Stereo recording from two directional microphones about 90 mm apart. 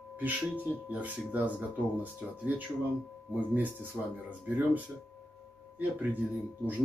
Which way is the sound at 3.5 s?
20° right (ahead or behind).